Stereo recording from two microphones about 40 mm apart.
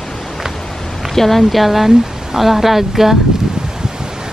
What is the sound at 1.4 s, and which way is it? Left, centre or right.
Speech, centre.